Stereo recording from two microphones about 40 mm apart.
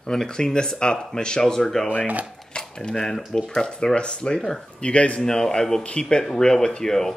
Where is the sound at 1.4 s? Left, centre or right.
Centre.